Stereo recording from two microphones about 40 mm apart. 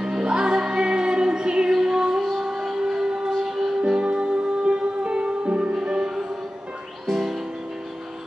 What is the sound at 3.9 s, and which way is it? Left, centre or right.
Music, right.